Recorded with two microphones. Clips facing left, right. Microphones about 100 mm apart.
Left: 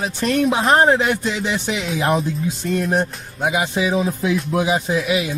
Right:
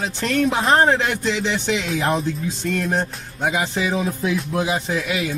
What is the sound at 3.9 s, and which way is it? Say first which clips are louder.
Music: left 3 dB; 20° left (ahead or behind).